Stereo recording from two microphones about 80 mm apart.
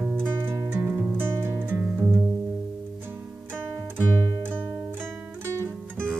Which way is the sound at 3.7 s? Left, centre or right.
Right.